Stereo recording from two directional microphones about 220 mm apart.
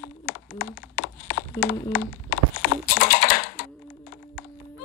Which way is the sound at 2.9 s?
40° left (ahead or behind).